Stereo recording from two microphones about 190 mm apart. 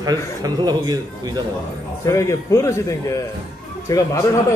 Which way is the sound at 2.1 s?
15° left (ahead or behind).